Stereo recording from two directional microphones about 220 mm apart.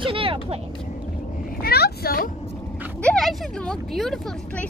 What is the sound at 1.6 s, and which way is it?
Speech, 45° left (ahead or behind).